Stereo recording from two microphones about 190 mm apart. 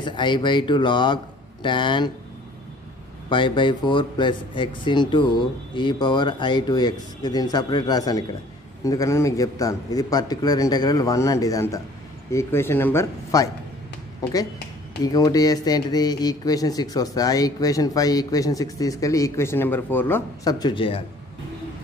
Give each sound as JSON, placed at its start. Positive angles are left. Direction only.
{"t": 0.0, "sound": "speech", "side_deg": 25}
{"t": 3.3, "sound": "speech", "side_deg": 25}